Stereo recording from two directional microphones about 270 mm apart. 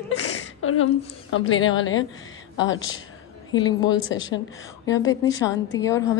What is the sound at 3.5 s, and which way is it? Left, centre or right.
Speech, centre.